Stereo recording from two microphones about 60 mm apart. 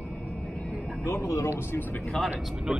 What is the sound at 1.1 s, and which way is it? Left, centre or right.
Speech, left.